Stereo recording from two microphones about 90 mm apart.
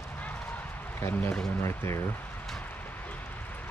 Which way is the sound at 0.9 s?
30° left (ahead or behind).